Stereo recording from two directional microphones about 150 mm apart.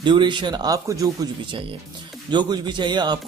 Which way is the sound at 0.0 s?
30° right (ahead or behind).